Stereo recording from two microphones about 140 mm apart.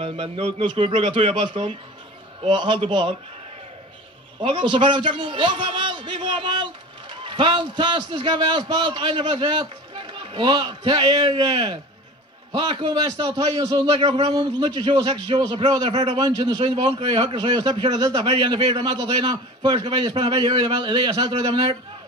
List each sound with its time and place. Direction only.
0.0 s a man's voice: 45° right (ahead or behind)
4.4 s a man's voice: 35° right (ahead or behind)
13.8 s speech: 45° right (ahead or behind)
14.2 s a man's voice: 30° right (ahead or behind)